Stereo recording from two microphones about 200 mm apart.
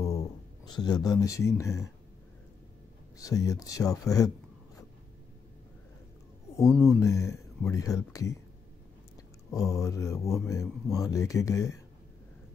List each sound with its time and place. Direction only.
0.0 s speech: 15° left (ahead or behind)
3.2 s speech: 15° left (ahead or behind)
6.6 s speech: centre (ahead or behind)
7.0 s speech: 15° left (ahead or behind)
9.5 s speech: 15° left (ahead or behind)